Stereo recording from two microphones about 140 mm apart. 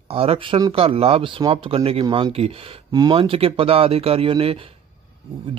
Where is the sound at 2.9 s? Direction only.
35° right (ahead or behind).